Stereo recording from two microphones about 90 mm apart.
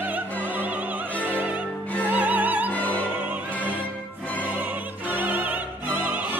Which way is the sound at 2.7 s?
15° left (ahead or behind).